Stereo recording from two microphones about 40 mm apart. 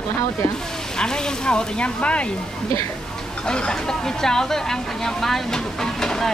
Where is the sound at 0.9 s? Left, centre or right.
Centre.